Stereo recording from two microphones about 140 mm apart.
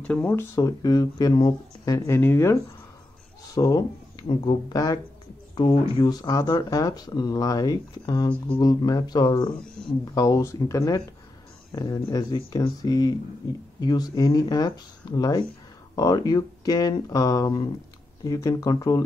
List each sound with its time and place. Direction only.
0.0 s speech: 10° left (ahead or behind)
0.6 s speech: 25° left (ahead or behind)